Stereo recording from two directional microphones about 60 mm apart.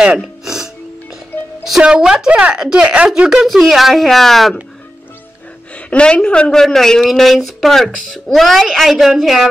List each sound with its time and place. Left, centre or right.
0.2 s music: centre
1.8 s a woman's voice: centre
3.4 s speech: centre
5.8 s a woman's voice: centre
6.6 s speech: centre